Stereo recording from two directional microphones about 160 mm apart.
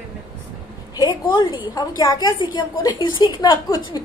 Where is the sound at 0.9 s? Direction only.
25° left (ahead or behind).